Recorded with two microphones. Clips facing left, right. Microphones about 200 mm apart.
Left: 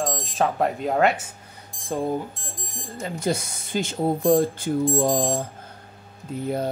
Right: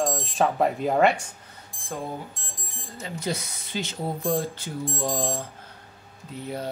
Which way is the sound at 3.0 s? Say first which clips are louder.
Left 5 dB; 50° left (ahead or behind).